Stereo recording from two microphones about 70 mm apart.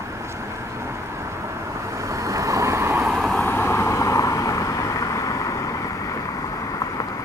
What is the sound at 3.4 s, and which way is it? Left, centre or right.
Vehicle, left.